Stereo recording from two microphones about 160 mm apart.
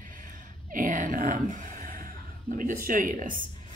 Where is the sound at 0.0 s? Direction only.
55° right (ahead or behind).